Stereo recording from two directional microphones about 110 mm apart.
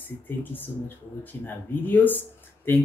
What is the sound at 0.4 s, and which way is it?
Speech, 15° left (ahead or behind).